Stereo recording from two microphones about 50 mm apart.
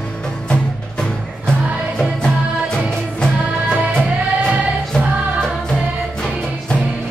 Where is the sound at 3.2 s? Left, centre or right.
Centre.